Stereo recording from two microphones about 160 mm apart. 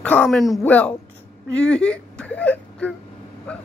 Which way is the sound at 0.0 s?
10° left (ahead or behind).